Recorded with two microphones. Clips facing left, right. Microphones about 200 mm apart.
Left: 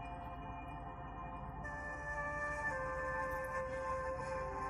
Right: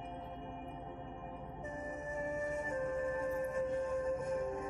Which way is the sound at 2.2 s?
30° right (ahead or behind).